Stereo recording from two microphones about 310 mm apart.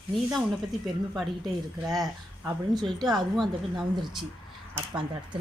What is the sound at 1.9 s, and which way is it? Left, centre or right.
A woman's voice, centre.